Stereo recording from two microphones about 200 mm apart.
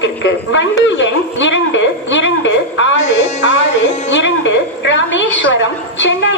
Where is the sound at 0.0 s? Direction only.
65° left (ahead or behind).